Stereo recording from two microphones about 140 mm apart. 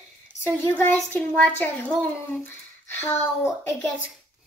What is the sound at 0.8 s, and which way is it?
Speech, 15° left (ahead or behind).